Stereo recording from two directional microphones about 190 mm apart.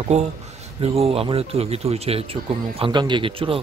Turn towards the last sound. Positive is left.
turn(degrees=-30)  # may be behind; listen again after turning